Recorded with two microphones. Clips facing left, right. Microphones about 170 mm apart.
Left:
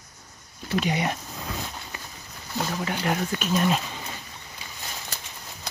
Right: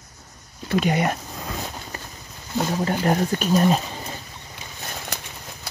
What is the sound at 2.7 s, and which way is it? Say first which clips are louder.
Speech: right 6 dB; 40° right (ahead or behind).